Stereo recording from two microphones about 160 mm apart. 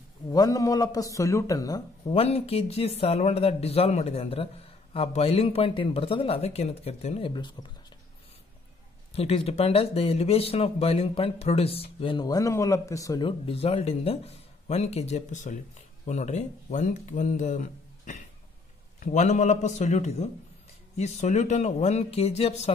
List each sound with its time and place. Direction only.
0.3 s a man's voice: 20° left (ahead or behind)
2.0 s speech: 40° left (ahead or behind)
9.1 s speech: 40° left (ahead or behind); by 13.3 s 20° left (ahead or behind)
13.5 s speech: 35° left (ahead or behind)